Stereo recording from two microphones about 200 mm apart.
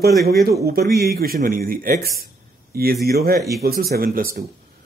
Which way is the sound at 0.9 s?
50° right (ahead or behind).